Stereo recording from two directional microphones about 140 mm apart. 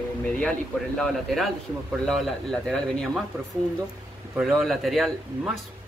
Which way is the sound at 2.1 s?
5° left (ahead or behind).